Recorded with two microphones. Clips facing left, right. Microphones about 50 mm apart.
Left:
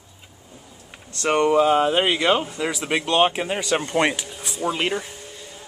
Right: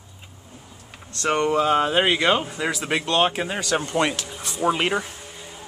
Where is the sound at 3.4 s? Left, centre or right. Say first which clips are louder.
Left 1 dB; left.